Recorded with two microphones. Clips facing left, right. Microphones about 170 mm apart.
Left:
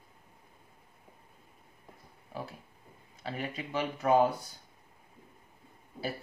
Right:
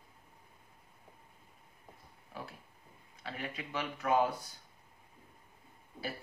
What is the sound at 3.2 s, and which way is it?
Speech, 30° left (ahead or behind).